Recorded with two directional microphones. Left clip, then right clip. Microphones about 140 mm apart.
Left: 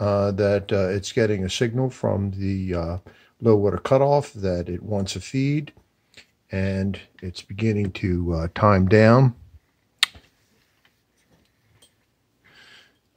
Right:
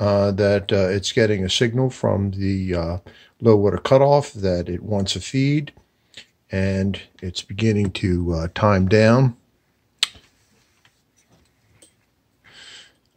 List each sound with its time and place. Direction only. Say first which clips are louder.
0.0 s speech: right 3 dB; 10° left (ahead or behind); by 9.3 s 30° left (ahead or behind)
9.9 s finger snapping: left 1 dB; 35° left (ahead or behind)
12.5 s a sound: right 7 dB; 10° right (ahead or behind)